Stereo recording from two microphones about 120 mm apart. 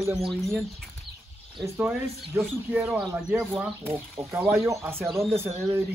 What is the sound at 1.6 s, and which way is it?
Speech, 20° right (ahead or behind).